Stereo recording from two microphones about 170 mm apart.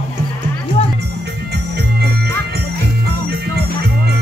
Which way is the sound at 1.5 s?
75° right (ahead or behind).